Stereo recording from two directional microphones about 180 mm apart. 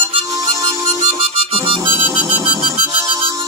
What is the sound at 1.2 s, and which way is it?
Music, 35° right (ahead or behind).